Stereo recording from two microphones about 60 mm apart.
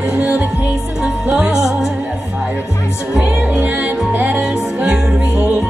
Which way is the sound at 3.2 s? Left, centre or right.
Right.